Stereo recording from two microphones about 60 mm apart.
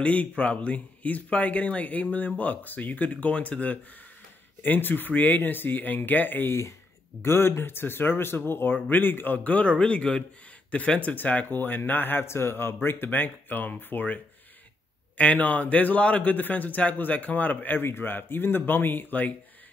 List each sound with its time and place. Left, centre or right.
0.0 s a man's voice: left
7.2 s a man's voice: left